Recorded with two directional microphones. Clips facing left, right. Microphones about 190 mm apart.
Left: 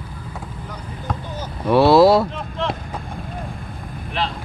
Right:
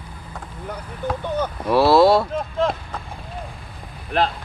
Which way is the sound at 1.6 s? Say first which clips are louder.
Left 2 dB; centre (ahead or behind).